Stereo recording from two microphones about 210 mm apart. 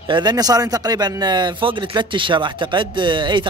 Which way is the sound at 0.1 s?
20° right (ahead or behind).